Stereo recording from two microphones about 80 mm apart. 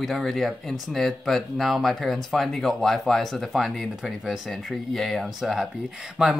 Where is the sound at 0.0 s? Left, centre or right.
Centre.